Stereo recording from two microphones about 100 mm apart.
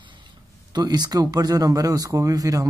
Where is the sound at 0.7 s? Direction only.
45° right (ahead or behind).